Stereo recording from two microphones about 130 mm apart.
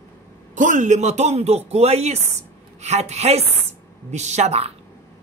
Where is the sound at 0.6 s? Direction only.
80° right.